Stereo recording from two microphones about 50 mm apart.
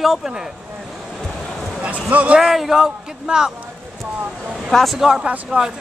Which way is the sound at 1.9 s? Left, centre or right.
Right.